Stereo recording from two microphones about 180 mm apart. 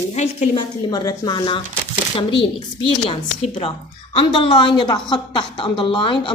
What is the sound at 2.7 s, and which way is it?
A woman's voice, 30° left (ahead or behind).